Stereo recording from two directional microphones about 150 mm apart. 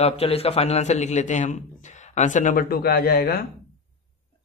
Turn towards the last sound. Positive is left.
turn(degrees=90)